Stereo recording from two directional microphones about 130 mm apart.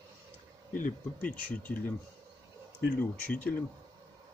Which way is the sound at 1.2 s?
10° left (ahead or behind).